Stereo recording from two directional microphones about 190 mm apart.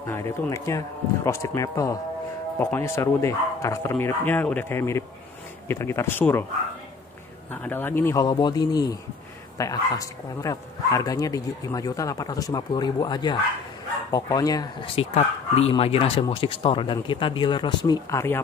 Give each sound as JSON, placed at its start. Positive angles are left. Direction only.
{"t": 0.0, "sound": "speech", "side_deg": 15}
{"t": 7.5, "sound": "speech", "side_deg": 10}